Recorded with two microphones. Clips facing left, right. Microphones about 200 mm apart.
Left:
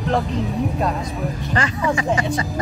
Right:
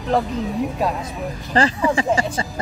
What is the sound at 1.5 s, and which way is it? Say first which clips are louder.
Speech: right 4 dB; 30° right (ahead or behind).